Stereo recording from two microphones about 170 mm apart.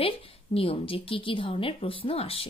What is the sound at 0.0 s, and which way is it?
A woman's voice, 35° left (ahead or behind).